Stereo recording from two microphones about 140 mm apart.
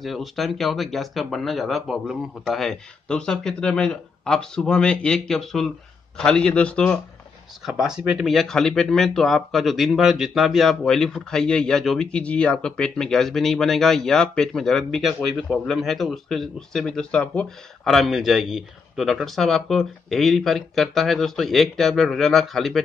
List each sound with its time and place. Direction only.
0.0 s a man's voice: centre (ahead or behind)
7.6 s speech: 5° right (ahead or behind)